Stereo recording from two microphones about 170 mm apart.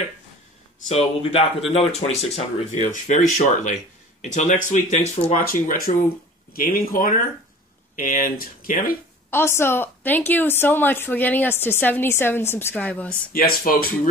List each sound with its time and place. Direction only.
0.7 s speech: 40° left (ahead or behind)
5.4 s speech: 60° left (ahead or behind)
9.3 s a woman's voice: 15° left (ahead or behind)
13.3 s speech: 60° left (ahead or behind)